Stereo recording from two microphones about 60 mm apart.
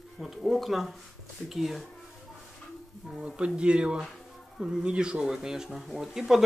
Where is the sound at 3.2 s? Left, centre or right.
Centre.